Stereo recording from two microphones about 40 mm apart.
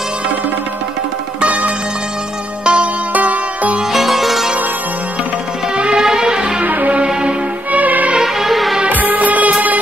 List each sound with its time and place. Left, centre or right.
1.4 s music: right
2.6 s music: right
3.2 s music: right
3.9 s music: centre
5.8 s music: right
6.6 s music: right
6.9 s music: right
7.8 s music: right
8.2 s music: centre
8.8 s music: right